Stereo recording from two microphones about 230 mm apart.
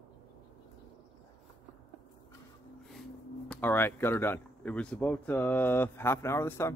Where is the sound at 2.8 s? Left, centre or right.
Centre.